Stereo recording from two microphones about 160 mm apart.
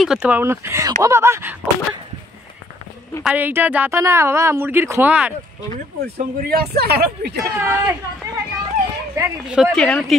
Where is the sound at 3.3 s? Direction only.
10° right (ahead or behind).